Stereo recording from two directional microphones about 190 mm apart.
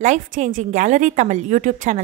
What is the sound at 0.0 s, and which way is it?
A woman's voice, 40° right (ahead or behind).